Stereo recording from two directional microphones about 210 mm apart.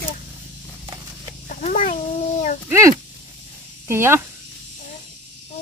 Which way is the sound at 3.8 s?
10° right (ahead or behind).